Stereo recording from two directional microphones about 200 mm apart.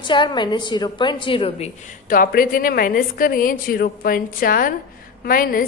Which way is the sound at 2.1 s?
45° left (ahead or behind).